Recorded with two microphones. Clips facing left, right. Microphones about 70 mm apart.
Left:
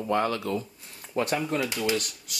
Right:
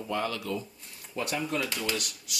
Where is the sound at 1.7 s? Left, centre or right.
Centre.